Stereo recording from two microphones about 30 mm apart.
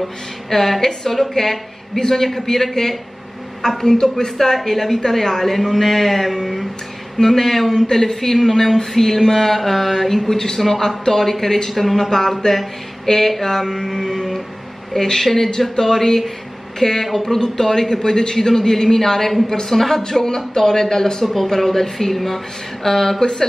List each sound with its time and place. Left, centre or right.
0.0 s mantra: centre
7.2 s mantra: centre
12.5 s speech: centre
13.4 s mantra: centre
20.0 s a man's voice: left
21.5 s mantra: centre